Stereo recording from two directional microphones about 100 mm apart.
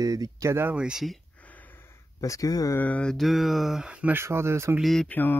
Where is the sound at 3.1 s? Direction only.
Centre (ahead or behind).